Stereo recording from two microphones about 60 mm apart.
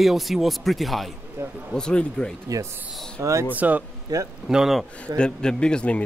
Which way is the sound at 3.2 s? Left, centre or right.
Right.